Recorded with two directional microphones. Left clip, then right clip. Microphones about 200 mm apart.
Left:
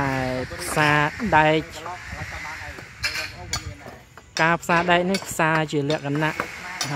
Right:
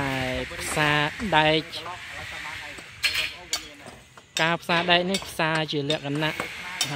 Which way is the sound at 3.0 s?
15° right (ahead or behind).